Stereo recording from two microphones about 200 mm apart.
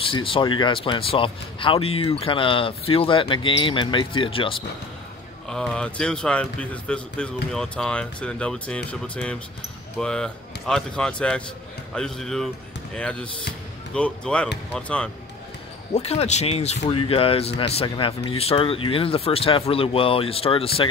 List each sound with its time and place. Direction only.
0.0 s speech: 25° left (ahead or behind)
5.5 s speech: 5° left (ahead or behind)
15.9 s speech: 30° left (ahead or behind)